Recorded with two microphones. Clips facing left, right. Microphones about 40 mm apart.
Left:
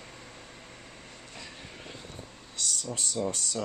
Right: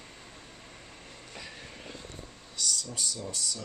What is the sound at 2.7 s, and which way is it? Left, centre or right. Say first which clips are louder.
Speech: left 1 dB; left.